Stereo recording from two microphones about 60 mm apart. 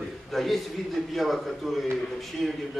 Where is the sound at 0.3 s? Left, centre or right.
Centre.